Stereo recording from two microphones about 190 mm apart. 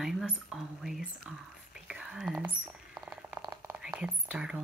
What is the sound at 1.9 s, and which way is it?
Whispering, 5° right (ahead or behind).